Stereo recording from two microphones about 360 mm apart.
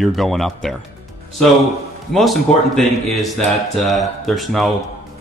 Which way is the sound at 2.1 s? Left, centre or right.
Centre.